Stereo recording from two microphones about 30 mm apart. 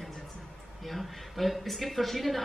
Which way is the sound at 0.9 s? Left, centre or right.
Centre.